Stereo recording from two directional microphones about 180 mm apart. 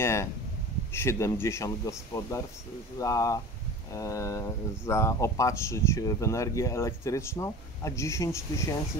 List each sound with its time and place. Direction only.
0.0 s speech: 15° left (ahead or behind)